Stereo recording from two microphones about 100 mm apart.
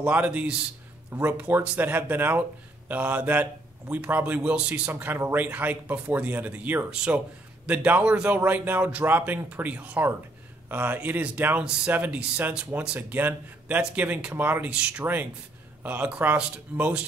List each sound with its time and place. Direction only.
0.0 s speech: 15° right (ahead or behind)